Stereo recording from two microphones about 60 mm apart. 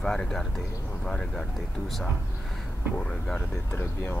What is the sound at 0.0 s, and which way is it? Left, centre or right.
Speech, centre.